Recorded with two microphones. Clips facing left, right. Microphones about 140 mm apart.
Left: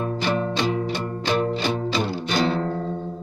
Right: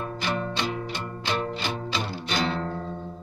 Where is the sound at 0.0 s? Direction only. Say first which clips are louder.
Left 6 dB; 25° left (ahead or behind).